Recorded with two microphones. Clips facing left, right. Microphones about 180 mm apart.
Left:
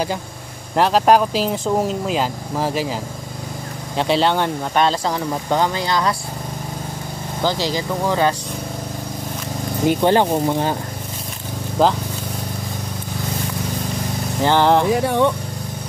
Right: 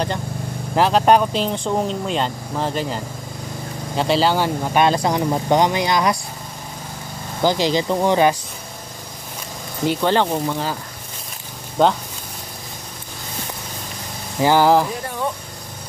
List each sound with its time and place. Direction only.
0.7 s speech: centre (ahead or behind)
7.4 s speech: 15° right (ahead or behind)
9.8 s speech: 15° left (ahead or behind)
10.4 s speech: 25° left (ahead or behind)
11.8 s speech: 5° left (ahead or behind)
14.4 s speech: 10° right (ahead or behind)
14.9 s speech: 85° left